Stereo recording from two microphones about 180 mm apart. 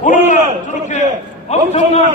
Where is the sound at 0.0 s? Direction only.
45° left (ahead or behind).